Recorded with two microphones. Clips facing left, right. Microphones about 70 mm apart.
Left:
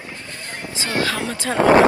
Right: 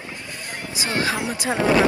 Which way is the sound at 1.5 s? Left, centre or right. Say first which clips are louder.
Left 5 dB; left.